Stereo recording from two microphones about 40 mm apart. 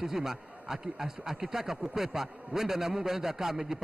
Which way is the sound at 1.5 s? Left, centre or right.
Centre.